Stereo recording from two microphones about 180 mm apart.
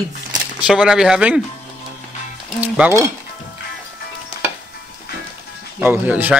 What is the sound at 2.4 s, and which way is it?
Speech, 5° right (ahead or behind).